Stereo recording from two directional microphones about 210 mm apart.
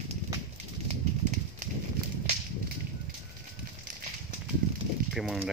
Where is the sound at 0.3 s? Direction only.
15° right (ahead or behind).